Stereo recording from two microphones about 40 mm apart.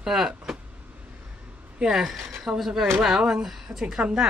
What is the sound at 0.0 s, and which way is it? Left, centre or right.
Speech, centre.